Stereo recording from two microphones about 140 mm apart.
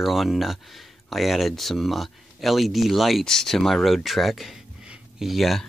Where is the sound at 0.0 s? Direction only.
Centre (ahead or behind).